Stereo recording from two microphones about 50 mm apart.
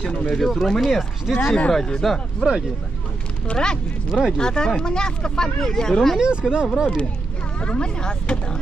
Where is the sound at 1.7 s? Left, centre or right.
Centre.